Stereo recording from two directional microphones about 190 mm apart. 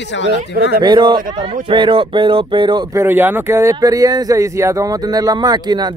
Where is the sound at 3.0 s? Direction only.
10° right (ahead or behind).